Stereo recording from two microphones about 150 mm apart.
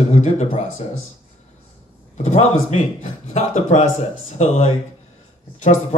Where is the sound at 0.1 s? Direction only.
50° left (ahead or behind).